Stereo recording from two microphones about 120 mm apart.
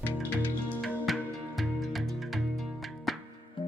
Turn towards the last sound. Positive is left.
turn(degrees=0)  # may be behind; listen again after turning